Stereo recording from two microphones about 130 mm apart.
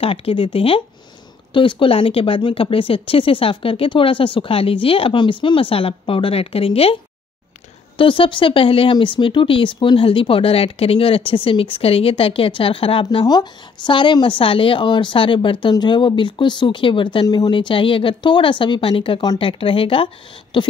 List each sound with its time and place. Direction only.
0.0 s speech: 45° left (ahead or behind)
8.0 s speech: 40° left (ahead or behind)
13.0 s speech: 30° left (ahead or behind)